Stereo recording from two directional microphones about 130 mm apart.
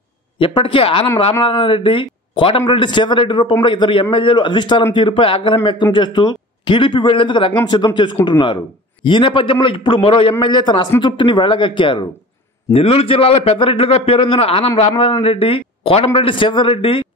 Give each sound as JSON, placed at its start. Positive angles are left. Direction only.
{"t": 0.4, "sound": "a man's voice", "side_deg": 40}